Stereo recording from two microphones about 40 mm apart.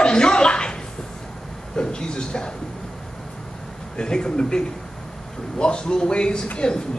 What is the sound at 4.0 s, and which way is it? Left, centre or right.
A man's voice, left.